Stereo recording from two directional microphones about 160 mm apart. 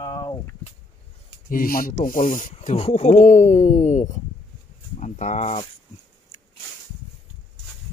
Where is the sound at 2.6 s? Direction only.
40° left (ahead or behind).